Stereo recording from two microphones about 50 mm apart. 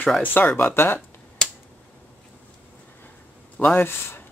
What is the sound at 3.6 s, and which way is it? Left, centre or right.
Speech, left.